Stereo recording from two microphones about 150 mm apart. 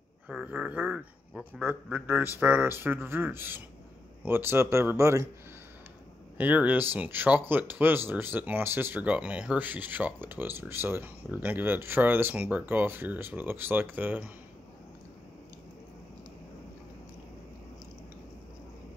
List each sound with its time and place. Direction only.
0.3 s speech: 5° right (ahead or behind)
6.3 s speech: 10° right (ahead or behind)